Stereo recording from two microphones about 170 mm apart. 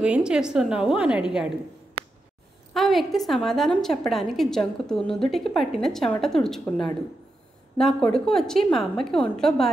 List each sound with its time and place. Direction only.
0.0 s a woman's voice: 5° right (ahead or behind)
2.7 s a woman's voice: centre (ahead or behind)